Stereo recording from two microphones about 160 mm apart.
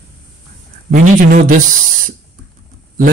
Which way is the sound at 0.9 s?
60° right (ahead or behind).